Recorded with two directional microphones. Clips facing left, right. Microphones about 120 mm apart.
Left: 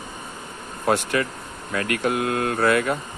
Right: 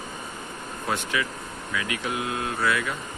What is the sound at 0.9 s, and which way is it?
Speech, 50° left (ahead or behind).